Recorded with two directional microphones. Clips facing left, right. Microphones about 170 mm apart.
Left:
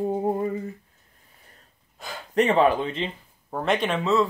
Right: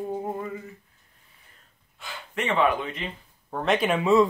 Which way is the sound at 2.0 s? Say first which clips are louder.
Left 9 dB; 40° left (ahead or behind).